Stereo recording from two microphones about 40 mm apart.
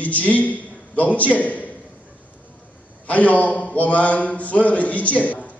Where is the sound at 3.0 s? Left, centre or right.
Left.